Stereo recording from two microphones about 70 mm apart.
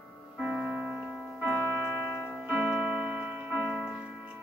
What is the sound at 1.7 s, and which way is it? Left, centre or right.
Music, right.